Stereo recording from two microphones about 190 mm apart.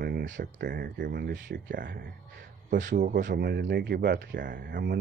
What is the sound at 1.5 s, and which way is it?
Speech, 65° right (ahead or behind).